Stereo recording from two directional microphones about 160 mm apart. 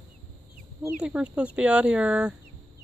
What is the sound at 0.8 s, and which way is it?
Speech, 5° right (ahead or behind).